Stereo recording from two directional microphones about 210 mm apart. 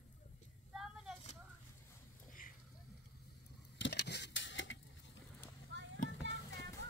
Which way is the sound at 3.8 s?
55° left (ahead or behind).